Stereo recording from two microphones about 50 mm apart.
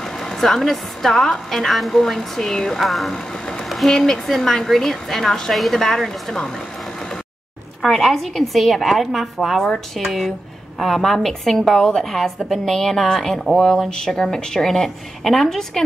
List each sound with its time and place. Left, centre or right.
0.0 s a woman's voice: centre
7.8 s a woman's voice: centre